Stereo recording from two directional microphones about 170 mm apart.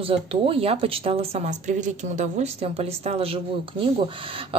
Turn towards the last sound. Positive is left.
turn(degrees=-35)  # may be behind; listen again after turning